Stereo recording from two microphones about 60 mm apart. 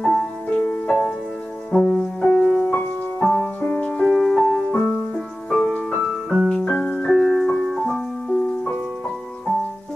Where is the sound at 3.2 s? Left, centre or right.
Centre.